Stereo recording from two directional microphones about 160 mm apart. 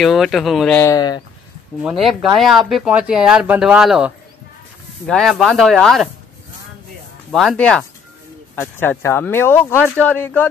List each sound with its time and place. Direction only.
0.0 s speech: centre (ahead or behind)
0.7 s speech: 20° left (ahead or behind)
1.8 s speech: 5° right (ahead or behind)
7.2 s speech: centre (ahead or behind)